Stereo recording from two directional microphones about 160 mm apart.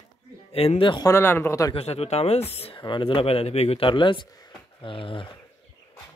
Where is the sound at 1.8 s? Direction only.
40° left (ahead or behind).